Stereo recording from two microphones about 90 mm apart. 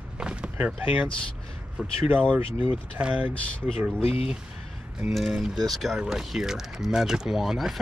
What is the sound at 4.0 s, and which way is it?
Speech, 90° left.